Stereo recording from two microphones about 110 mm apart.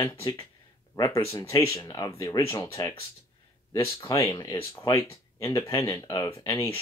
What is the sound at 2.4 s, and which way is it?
Speech, 20° left (ahead or behind).